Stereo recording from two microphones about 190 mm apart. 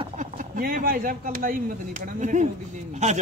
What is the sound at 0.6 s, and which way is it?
Speech, 50° right (ahead or behind).